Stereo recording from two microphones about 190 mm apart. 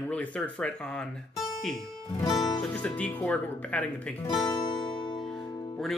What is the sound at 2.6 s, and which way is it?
Speech, 5° left (ahead or behind).